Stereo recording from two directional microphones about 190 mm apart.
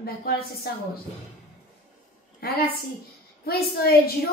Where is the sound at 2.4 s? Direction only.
55° left (ahead or behind).